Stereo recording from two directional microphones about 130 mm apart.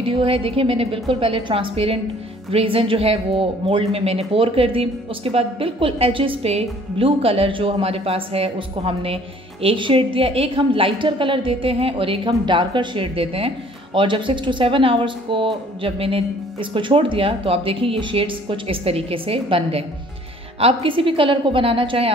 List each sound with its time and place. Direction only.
0.0 s speech: 45° right (ahead or behind)